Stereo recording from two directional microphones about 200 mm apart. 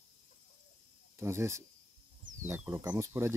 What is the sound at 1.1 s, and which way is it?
Speech, 15° right (ahead or behind).